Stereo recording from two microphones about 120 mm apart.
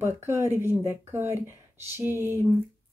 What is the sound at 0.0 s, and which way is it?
Speech, 20° right (ahead or behind).